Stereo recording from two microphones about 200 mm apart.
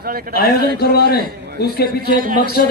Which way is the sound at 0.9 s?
50° left (ahead or behind).